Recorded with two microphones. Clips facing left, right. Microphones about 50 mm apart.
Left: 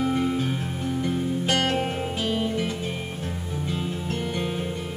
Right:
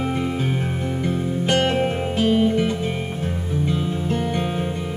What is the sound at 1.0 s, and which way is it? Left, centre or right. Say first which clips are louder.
Music: right 3 dB; centre.